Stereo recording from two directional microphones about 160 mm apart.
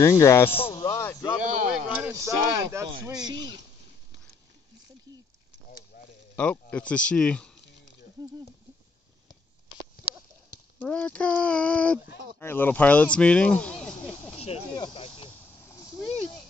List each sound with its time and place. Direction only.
0.0 s speech: 15° left (ahead or behind)
0.7 s a sound: 20° left (ahead or behind)
1.7 s speech: 10° right (ahead or behind); by 3.3 s 25° right (ahead or behind)
5.9 s a sound: 65° left (ahead or behind)
6.3 s speech: 10° left (ahead or behind)
10.8 s speech: 10° left (ahead or behind)
14.3 s snake: 40° left (ahead or behind)
14.8 s speech: 35° left (ahead or behind)